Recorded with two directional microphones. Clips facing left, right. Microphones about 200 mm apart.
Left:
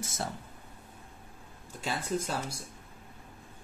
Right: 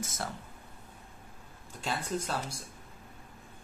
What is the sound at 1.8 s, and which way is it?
Speech, 10° left (ahead or behind).